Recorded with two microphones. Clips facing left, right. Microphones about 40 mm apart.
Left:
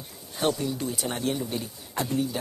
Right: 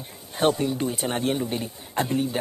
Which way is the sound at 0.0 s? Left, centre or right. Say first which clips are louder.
Right 5 dB; right.